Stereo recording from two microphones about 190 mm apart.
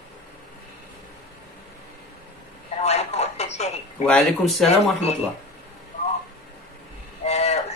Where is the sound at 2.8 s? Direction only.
35° left (ahead or behind).